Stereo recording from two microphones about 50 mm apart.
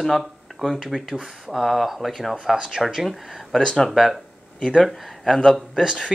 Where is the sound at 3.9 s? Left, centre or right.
Centre.